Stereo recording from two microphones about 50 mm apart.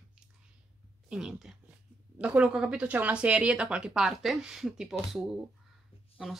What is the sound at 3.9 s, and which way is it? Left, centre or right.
Speech, centre.